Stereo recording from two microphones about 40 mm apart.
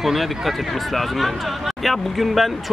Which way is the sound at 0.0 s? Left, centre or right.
Centre.